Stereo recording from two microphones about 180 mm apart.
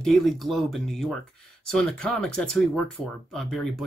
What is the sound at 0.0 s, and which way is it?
Speech, centre (ahead or behind).